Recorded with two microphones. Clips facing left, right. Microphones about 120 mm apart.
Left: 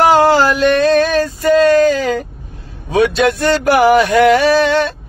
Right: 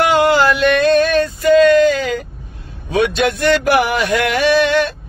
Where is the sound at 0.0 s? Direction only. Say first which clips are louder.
Left 3 dB; 35° left (ahead or behind).